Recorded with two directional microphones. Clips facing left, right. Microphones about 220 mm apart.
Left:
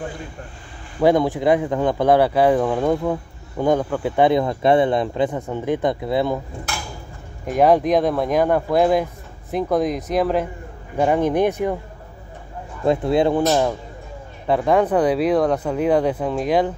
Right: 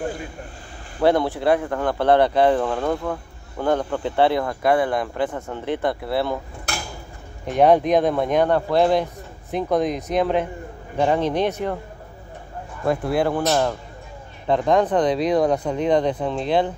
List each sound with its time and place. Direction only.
1.0 s speech: 15° left (ahead or behind)
7.4 s speech: centre (ahead or behind)
12.8 s speech: 20° left (ahead or behind)
14.5 s speech: 10° left (ahead or behind)